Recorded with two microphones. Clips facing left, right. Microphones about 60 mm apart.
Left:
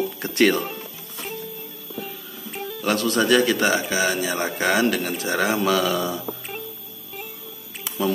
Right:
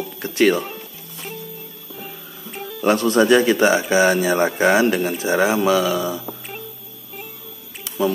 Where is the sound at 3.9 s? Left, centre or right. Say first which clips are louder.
Right 7 dB; right; by 6.6 s centre.